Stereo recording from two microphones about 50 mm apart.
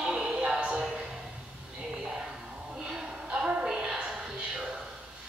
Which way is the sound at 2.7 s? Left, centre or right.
Centre.